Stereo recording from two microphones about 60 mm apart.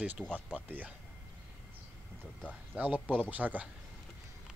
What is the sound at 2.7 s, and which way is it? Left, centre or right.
Speech, right.